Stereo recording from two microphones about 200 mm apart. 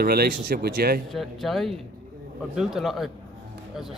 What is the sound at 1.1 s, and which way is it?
Speech, centre (ahead or behind).